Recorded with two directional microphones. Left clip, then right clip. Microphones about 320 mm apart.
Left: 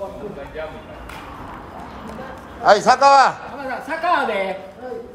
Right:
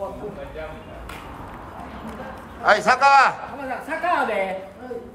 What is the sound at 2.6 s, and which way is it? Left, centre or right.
A man's voice, centre.